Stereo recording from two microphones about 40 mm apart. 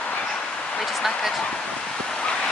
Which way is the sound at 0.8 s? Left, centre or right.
Centre.